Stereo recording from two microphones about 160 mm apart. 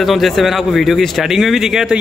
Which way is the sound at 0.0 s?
Centre (ahead or behind).